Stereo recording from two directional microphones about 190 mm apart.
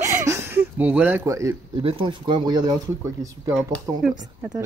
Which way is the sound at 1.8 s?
30° right (ahead or behind).